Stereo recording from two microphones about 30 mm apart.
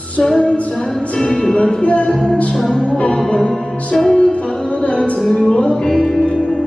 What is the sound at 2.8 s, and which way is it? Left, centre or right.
Music, left.